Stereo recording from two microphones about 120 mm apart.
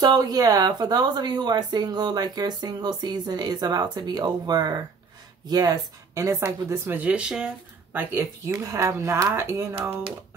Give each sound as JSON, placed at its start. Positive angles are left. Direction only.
{"t": 0.0, "sound": "speech", "side_deg": -35}